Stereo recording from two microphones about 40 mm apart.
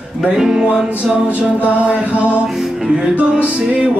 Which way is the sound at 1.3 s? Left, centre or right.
Right.